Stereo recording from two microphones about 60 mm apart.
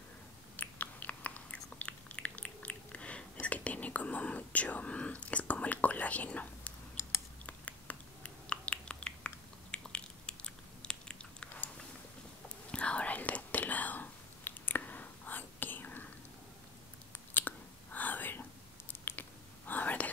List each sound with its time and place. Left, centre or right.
0.6 s biting: left
7.4 s a sound: left
12.7 s whispering: centre
17.3 s whispering: left